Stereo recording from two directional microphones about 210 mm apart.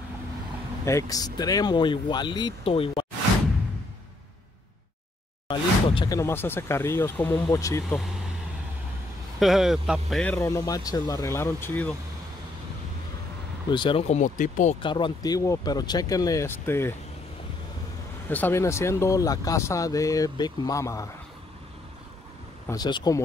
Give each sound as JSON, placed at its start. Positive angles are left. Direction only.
{"t": 0.8, "sound": "speech", "side_deg": 15}
{"t": 5.5, "sound": "speech", "side_deg": 20}
{"t": 7.9, "sound": "speech", "side_deg": 0}
{"t": 9.4, "sound": "speech", "side_deg": 0}
{"t": 13.7, "sound": "speech", "side_deg": 25}
{"t": 14.8, "sound": "speech", "side_deg": 25}
{"t": 18.3, "sound": "speech", "side_deg": 10}
{"t": 22.7, "sound": "speech", "side_deg": 20}